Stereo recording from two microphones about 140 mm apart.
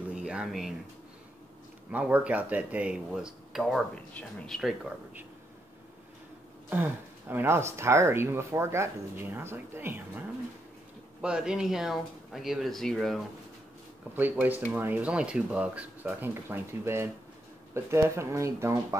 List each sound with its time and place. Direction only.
0.1 s a sound: 5° right (ahead or behind)
1.9 s speech: 10° right (ahead or behind)
3.9 s speech: 10° left (ahead or behind)
6.7 s speech: 10° right (ahead or behind)
14.1 s speech: 10° right (ahead or behind)